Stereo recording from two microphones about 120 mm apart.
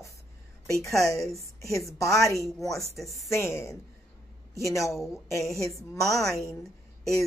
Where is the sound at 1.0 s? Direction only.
25° left (ahead or behind).